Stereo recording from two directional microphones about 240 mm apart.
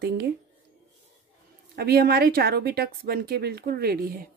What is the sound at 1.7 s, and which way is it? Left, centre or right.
A woman's voice, right.